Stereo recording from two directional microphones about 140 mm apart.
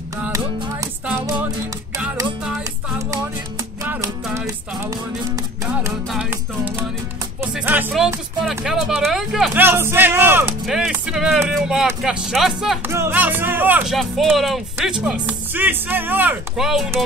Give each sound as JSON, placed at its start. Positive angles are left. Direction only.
{"t": 3.8, "sound": "music", "side_deg": -20}
{"t": 5.7, "sound": "music", "side_deg": -10}
{"t": 8.5, "sound": "speech", "side_deg": -5}
{"t": 9.5, "sound": "music", "side_deg": -15}
{"t": 10.7, "sound": "speech", "side_deg": 0}
{"t": 12.8, "sound": "music", "side_deg": -15}
{"t": 13.9, "sound": "speech", "side_deg": 0}